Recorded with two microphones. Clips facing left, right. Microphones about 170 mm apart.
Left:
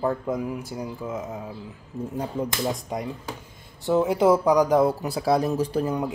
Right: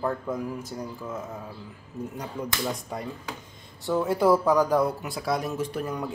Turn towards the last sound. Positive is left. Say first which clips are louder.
# left 5 dB
turn(degrees=25)  # may be behind; listen again after turning